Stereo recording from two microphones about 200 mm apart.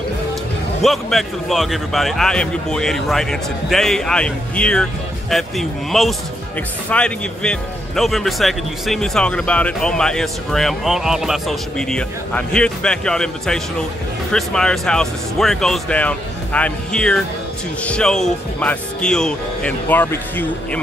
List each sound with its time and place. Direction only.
0.8 s speech: centre (ahead or behind)